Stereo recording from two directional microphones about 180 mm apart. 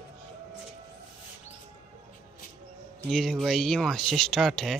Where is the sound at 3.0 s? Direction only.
Centre (ahead or behind).